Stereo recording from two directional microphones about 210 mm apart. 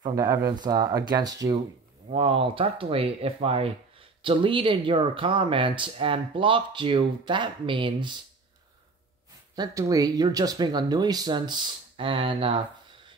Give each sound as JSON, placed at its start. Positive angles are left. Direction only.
{"t": 0.0, "sound": "speech", "side_deg": -20}
{"t": 9.6, "sound": "speech", "side_deg": -15}